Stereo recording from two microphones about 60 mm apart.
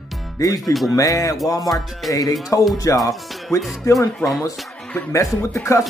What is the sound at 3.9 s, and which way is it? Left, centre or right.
Music, left.